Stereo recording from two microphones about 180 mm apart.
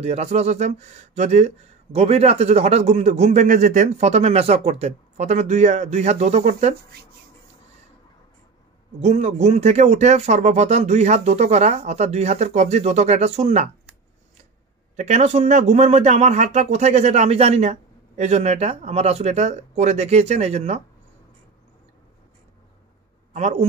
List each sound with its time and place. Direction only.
0.0 s speech: 35° right (ahead or behind)
9.0 s speech: 40° right (ahead or behind)
15.0 s speech: 40° right (ahead or behind)
23.3 s a man's voice: 40° right (ahead or behind)